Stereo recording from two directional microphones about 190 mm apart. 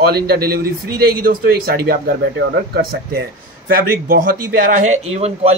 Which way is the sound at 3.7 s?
50° right (ahead or behind).